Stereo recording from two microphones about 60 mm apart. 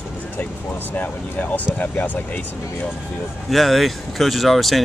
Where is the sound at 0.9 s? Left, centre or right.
Left.